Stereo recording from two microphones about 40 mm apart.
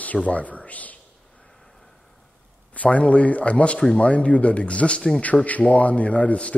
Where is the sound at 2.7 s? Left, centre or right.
Left.